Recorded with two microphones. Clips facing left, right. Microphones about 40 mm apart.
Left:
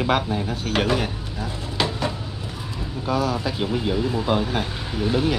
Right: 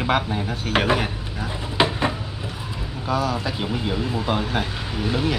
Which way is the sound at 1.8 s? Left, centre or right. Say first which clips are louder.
Right 4 dB; right.